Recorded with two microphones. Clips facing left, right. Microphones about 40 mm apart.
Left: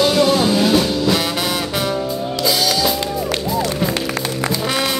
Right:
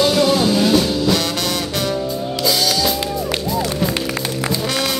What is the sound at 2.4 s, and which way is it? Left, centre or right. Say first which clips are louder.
Music: left 1 dB; centre.